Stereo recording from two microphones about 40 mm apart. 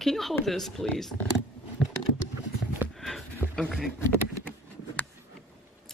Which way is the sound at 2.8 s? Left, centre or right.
Right.